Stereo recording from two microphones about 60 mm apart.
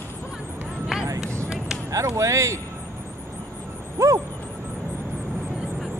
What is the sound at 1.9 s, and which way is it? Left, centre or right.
Speech, right.